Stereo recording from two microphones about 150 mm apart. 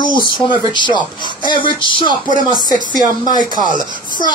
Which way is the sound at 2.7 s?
30° left (ahead or behind).